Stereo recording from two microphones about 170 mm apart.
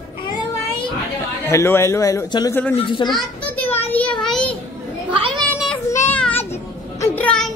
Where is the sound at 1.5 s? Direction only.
15° left (ahead or behind).